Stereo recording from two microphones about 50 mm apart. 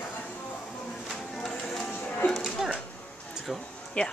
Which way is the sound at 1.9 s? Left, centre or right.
Left.